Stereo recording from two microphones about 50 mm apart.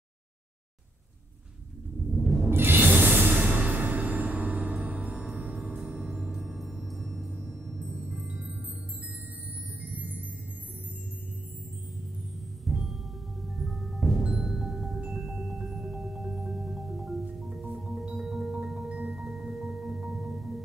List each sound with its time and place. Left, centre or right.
2.0 s music: centre
2.5 s music: right; by 7.2 s centre
7.2 s music: right
7.6 s music: centre
8.3 s music: right
9.8 s music: right
12.6 s music: centre
15.1 s marimba: centre
17.7 s music: centre
18.2 s marimba: centre
19.0 s music: centre